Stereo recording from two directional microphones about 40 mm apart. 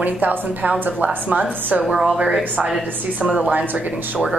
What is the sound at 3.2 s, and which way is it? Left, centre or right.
Speech, right.